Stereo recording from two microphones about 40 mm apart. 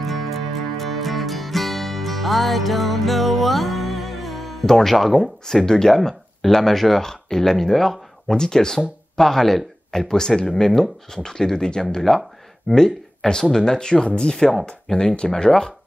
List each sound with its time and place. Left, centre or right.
0.0 s music: centre
4.6 s speech: centre
4.9 s speech: centre
5.5 s speech: centre
5.9 s speech: centre